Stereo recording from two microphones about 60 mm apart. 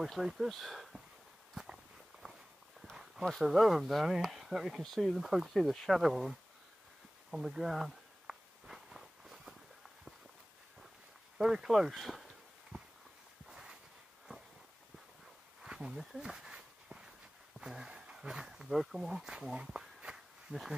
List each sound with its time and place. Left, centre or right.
0.0 s speech: centre
1.5 s walk: centre
3.4 s speech: centre
4.8 s speech: centre
7.2 s walk: centre
11.3 s speech: centre
13.5 s a sound: centre
15.6 s walk: centre
17.6 s speech: centre